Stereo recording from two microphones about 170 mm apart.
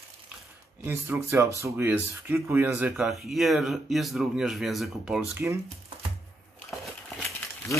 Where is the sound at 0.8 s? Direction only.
15° right (ahead or behind).